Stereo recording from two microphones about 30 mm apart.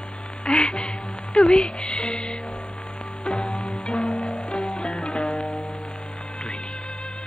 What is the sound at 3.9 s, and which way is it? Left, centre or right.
Music, left.